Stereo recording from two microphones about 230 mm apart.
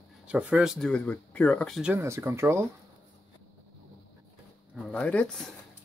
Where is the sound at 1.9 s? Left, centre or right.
Centre.